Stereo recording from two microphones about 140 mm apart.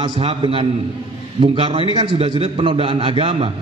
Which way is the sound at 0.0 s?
40° right (ahead or behind).